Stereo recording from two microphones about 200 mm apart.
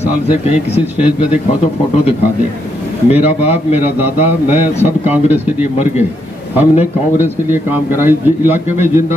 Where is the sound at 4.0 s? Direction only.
10° right (ahead or behind).